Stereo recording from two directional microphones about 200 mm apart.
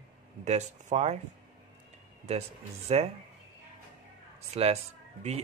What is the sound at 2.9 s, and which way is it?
Speech, 30° right (ahead or behind).